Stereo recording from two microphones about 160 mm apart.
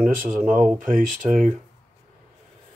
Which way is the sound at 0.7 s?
55° right (ahead or behind).